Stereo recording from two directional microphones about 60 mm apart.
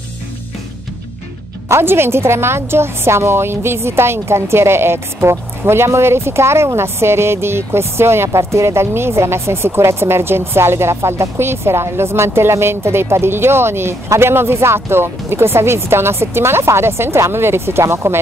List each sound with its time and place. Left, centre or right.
1.7 s a woman's voice: right